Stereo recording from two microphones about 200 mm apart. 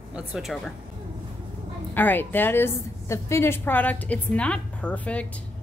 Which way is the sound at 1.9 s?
10° left (ahead or behind).